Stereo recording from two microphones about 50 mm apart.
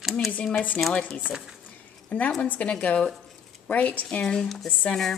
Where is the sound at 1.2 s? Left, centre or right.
Centre.